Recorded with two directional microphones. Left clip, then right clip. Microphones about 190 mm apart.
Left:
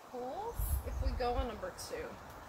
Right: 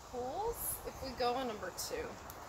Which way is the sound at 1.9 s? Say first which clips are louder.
Right 2 dB; 50° right (ahead or behind).